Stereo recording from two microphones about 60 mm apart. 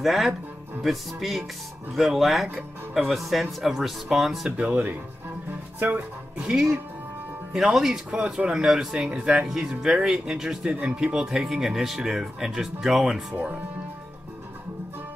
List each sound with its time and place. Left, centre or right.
0.0 s speech: centre; by 6.5 s right
6.5 s speech: centre